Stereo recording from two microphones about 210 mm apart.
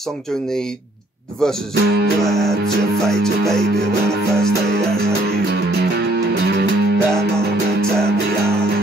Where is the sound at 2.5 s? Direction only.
50° right (ahead or behind).